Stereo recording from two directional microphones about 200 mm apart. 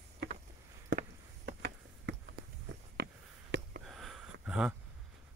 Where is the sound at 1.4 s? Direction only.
60° right (ahead or behind).